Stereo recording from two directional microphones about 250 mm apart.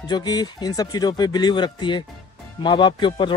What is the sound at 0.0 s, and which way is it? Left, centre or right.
A man's voice, centre.